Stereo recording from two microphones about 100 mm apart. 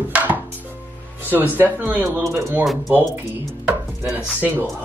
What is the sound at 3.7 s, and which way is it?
Chopping, 15° right (ahead or behind).